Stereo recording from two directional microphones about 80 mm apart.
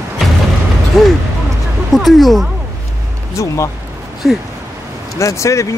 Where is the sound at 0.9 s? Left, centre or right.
Centre.